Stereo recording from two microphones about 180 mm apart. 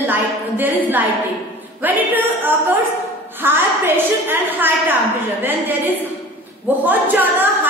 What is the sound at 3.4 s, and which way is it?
A woman's voice, 10° right (ahead or behind).